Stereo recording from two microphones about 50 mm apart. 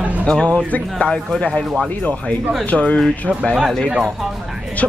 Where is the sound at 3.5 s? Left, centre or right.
Centre.